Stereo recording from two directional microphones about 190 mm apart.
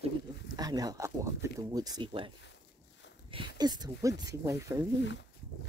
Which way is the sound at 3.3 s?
20° right (ahead or behind).